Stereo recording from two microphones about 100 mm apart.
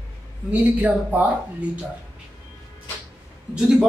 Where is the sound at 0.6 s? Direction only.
15° right (ahead or behind).